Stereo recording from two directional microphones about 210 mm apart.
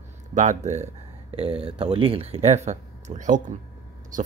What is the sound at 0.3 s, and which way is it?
Speech, 35° right (ahead or behind).